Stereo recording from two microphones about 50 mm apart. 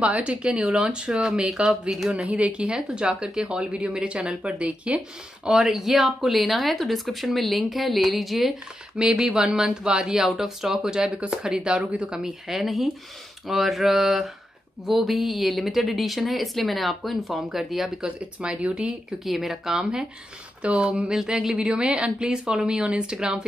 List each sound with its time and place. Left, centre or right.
0.0 s speech: right; by 2.0 s centre
2.2 s speech: right
5.6 s a woman's voice: centre
11.8 s speech: right
12.4 s speech: centre
18.6 s speech: right
19.2 s a woman's voice: centre; by 21.0 s right
21.1 s a woman's voice: centre